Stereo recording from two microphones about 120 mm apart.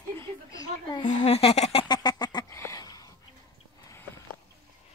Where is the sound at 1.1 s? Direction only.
60° left (ahead or behind).